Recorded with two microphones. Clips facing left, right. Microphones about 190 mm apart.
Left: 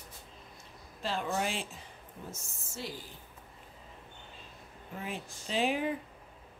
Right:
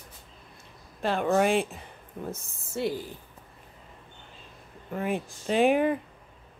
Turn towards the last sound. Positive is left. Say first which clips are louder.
# right 9 dB
turn(degrees=-55)  # may be behind; listen again after turning